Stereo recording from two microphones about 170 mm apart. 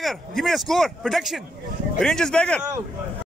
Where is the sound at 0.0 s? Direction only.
Centre (ahead or behind).